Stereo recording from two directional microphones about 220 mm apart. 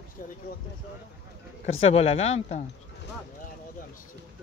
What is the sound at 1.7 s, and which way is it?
Speech, 25° left (ahead or behind).